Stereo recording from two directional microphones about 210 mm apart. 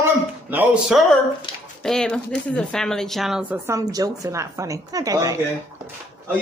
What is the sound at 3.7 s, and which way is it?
A woman's voice, 15° right (ahead or behind).